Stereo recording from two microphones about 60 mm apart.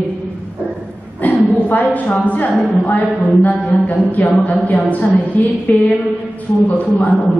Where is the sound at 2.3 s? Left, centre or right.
Left.